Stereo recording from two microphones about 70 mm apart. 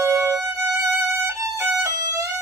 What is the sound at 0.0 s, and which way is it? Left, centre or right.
Music, right.